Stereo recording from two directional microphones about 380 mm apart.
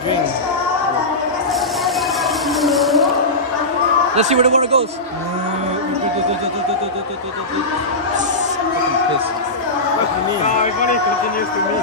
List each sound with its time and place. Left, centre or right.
2.6 s a sound: centre
4.1 s a man's voice: centre
10.6 s speech: centre